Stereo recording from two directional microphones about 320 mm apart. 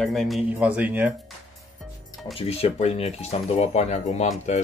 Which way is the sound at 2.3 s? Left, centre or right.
Centre.